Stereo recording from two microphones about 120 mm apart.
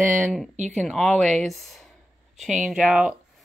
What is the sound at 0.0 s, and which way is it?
Speech, 15° right (ahead or behind).